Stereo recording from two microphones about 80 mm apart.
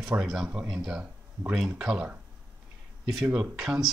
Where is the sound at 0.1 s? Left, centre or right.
Centre.